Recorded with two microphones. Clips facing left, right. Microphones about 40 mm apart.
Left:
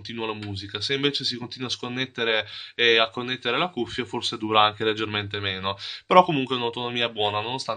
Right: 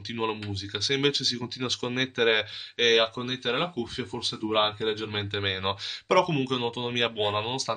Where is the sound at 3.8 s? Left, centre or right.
Left.